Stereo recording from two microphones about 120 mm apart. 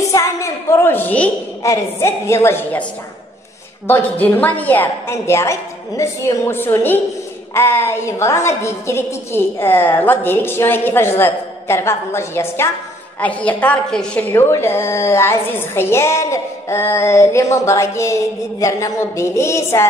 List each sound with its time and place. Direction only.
0.1 s a sound: 25° left (ahead or behind)
1.6 s a woman's voice: 25° left (ahead or behind)
3.8 s a woman's voice: 15° left (ahead or behind)
14.3 s a woman's voice: 20° left (ahead or behind)